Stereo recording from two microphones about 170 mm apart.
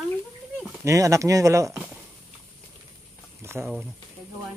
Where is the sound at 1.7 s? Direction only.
5° right (ahead or behind).